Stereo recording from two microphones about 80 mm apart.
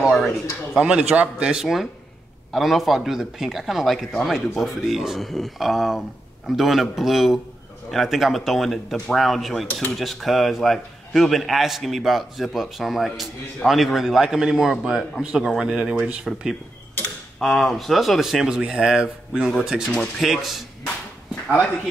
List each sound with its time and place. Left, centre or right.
0.1 s a sound: centre
0.7 s speech: centre
19.9 s speech: centre
20.2 s speech: centre